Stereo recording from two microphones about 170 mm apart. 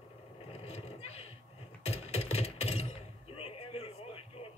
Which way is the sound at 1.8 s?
40° left (ahead or behind).